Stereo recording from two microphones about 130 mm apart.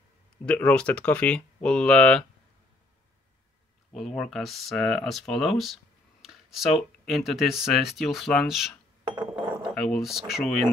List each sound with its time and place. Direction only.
0.5 s speech: 10° left (ahead or behind)
3.9 s speech: 5° left (ahead or behind)
6.2 s a sound: centre (ahead or behind)
6.8 s speech: centre (ahead or behind)
9.1 s glass: 35° right (ahead or behind)
9.8 s speech: 5° left (ahead or behind)